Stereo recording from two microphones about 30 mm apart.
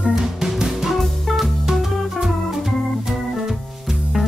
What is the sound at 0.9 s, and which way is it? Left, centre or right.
Music, centre.